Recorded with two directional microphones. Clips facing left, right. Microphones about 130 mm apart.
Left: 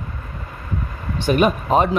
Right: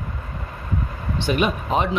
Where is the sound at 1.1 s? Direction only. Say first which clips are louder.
Left 5 dB; 45° left (ahead or behind).